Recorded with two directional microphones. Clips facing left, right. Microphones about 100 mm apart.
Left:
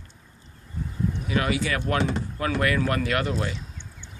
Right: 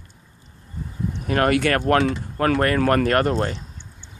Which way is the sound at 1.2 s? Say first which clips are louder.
Right 8 dB; 55° right (ahead or behind).